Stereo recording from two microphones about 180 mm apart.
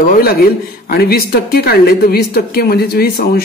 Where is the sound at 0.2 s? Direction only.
55° left (ahead or behind).